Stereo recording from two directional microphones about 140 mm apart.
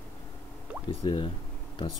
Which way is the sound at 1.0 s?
40° left (ahead or behind).